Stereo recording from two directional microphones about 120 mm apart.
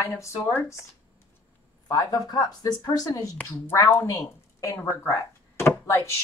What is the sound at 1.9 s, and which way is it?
Speech, 30° left (ahead or behind).